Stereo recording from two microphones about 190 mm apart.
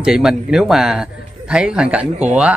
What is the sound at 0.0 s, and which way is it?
Speech, centre (ahead or behind).